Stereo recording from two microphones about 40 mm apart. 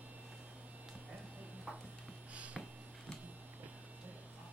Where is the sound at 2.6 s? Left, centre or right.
Centre.